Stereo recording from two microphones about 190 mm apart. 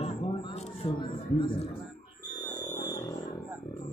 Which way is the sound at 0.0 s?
30° left (ahead or behind).